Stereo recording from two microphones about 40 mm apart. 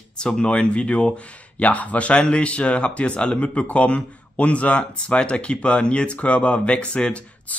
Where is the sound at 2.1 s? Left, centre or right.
Left.